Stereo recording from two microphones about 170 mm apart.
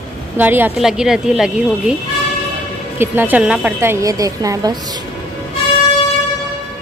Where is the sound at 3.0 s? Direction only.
10° right (ahead or behind).